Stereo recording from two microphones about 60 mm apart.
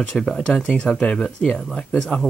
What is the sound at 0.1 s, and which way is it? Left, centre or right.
Speech, centre.